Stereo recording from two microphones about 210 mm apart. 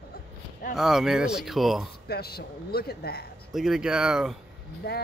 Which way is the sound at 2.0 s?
50° left (ahead or behind).